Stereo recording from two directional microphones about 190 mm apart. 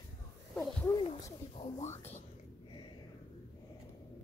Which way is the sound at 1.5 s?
35° left (ahead or behind).